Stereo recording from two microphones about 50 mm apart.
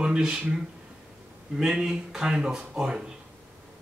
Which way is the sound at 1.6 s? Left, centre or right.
Centre.